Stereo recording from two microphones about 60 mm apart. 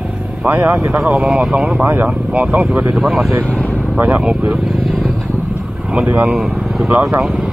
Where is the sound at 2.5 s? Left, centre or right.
Right.